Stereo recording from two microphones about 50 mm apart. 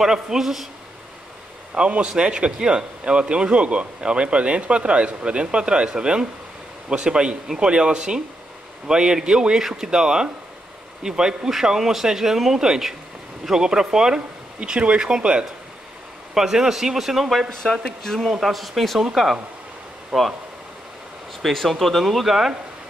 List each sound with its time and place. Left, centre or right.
0.0 s speech: centre
1.8 s speech: centre
17.8 s speech: centre
20.1 s speech: centre
21.4 s speech: centre